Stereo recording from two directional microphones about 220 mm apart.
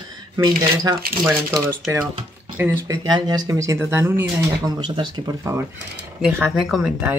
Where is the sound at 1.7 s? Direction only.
5° right (ahead or behind).